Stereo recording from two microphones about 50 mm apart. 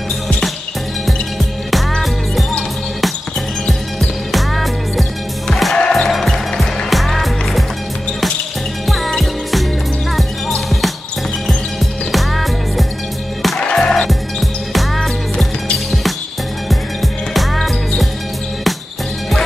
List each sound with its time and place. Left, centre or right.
1.9 s music: centre
3.6 s music: centre
8.8 s music: centre
12.1 s music: centre
13.6 s music: centre
14.0 s music: centre
16.6 s music: centre